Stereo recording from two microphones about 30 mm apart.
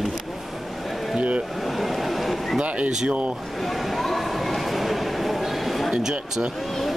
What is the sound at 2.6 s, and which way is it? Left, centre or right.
Speech, right.